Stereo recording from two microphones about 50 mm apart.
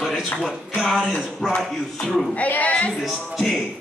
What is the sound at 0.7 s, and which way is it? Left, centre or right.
Music, centre.